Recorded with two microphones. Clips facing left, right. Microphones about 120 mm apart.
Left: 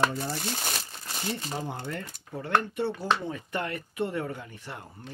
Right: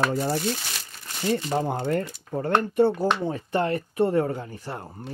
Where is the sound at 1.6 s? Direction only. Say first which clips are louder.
Right 10 dB; 50° right (ahead or behind).